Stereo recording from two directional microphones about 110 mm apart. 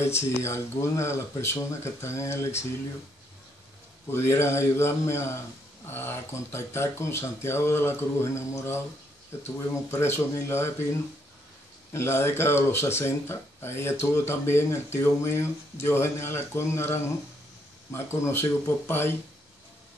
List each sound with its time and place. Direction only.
0.0 s speech: 25° left (ahead or behind)
4.1 s speech: 25° left (ahead or behind)
9.8 s speech: 25° left (ahead or behind)
11.9 s speech: 25° left (ahead or behind)